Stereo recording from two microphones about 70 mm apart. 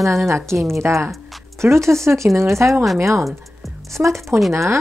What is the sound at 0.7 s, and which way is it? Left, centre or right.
Speech, right.